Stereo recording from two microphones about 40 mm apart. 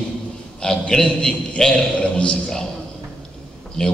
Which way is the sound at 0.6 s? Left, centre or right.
Centre.